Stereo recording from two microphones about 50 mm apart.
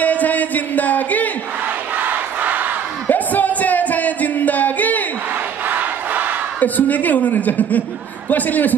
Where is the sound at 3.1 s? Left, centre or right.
Left.